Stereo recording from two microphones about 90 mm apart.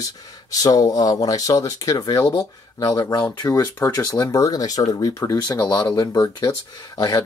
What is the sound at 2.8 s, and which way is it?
Speech, 45° left (ahead or behind).